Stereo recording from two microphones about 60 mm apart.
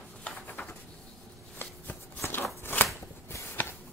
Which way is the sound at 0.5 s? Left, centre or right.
Left.